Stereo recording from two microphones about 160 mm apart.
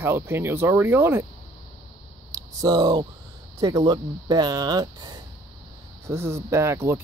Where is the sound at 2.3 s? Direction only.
25° right (ahead or behind).